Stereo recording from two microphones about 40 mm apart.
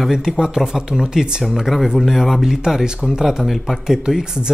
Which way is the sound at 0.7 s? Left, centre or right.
Centre.